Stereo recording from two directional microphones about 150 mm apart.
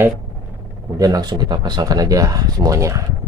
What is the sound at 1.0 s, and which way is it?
Speech, 25° right (ahead or behind).